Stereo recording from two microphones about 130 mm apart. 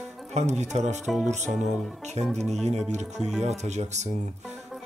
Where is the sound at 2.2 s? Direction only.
55° right (ahead or behind).